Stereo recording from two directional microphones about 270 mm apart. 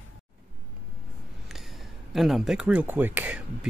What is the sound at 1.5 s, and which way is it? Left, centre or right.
Speech, centre.